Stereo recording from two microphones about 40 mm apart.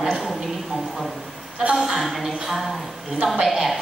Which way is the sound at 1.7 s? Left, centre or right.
Centre.